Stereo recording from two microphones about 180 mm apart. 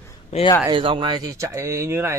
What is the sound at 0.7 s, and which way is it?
Speech, 25° right (ahead or behind).